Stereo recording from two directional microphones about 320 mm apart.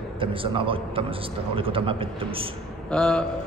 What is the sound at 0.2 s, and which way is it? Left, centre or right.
A man's voice, centre.